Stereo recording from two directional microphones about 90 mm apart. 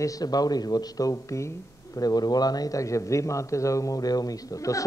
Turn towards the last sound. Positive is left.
turn(degrees=40)  # may be behind; listen again after turning